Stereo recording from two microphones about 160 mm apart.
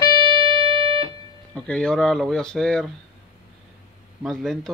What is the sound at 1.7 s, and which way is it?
Speech, 5° left (ahead or behind).